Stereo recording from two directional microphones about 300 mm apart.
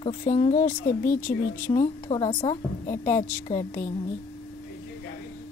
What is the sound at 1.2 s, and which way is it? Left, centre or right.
A woman's voice, centre.